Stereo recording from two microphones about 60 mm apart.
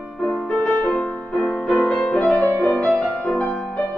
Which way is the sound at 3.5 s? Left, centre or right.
Centre.